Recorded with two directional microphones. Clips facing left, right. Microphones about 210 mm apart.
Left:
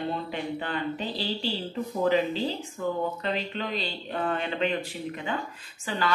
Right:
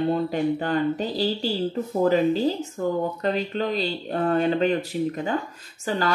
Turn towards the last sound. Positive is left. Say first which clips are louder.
# right 5 dB
turn(degrees=-40)  # may be behind; listen again after turning